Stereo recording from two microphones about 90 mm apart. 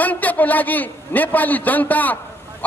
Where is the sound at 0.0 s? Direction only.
20° left (ahead or behind).